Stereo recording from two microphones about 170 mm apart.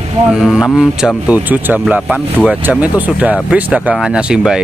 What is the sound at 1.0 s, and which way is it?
Speech, 10° right (ahead or behind).